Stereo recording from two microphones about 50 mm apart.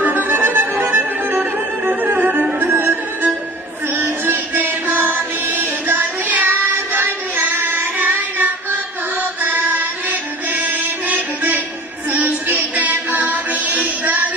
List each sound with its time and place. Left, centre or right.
0.0 s music: right
2.6 s music: right